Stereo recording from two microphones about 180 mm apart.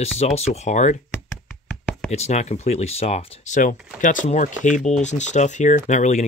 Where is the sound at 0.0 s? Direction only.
35° left (ahead or behind).